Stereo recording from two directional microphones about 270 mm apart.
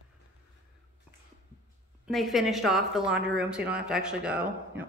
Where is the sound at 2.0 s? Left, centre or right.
Centre.